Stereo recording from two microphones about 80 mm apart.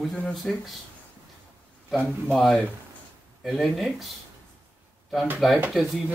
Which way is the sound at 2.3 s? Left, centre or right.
Centre.